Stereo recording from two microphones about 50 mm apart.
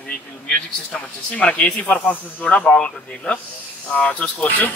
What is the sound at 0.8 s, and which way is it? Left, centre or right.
A man's voice, left.